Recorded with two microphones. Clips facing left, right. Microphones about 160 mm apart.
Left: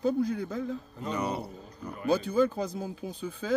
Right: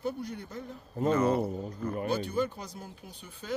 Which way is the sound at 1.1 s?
15° left (ahead or behind).